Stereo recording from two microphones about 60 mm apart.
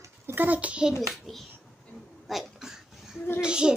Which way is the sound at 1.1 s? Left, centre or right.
Centre.